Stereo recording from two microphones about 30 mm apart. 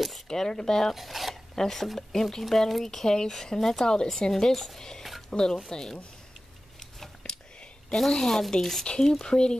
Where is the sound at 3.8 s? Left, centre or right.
Left.